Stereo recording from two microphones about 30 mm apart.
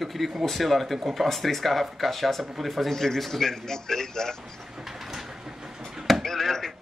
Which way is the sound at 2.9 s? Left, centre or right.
Centre.